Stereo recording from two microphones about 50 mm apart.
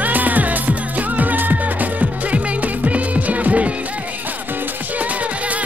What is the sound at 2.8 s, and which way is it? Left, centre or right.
Music, right.